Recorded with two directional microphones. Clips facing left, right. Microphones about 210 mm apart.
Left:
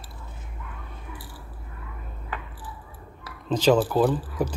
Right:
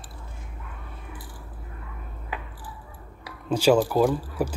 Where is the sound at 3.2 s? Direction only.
10° right (ahead or behind).